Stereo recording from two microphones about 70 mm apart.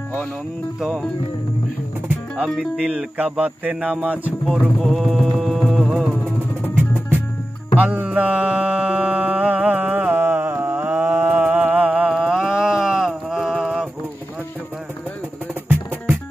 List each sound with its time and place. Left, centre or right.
0.7 s speech: centre
2.3 s speech: centre
2.8 s mantra: centre
4.5 s music: centre
7.7 s music: right
11.1 s a sound: right
12.1 s a sound: centre